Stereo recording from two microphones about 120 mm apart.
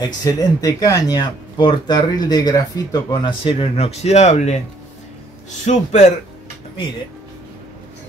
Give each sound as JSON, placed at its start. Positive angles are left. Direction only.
{"t": 0.0, "sound": "speech", "side_deg": 35}
{"t": 5.7, "sound": "a man's voice", "side_deg": 75}